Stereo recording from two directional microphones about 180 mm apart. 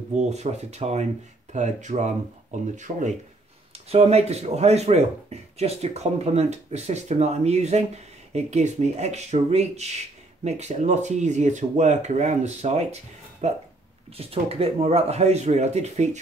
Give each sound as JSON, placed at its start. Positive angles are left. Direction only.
{"t": 0.1, "sound": "speech", "side_deg": -40}